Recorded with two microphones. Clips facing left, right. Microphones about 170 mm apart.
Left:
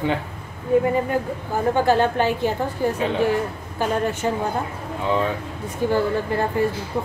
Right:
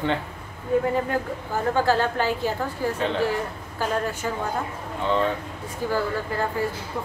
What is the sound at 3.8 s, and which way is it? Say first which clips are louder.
Speech: left 4 dB; 25° left (ahead or behind).